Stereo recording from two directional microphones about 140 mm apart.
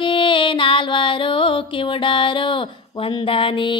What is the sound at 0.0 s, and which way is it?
Music, 35° left (ahead or behind).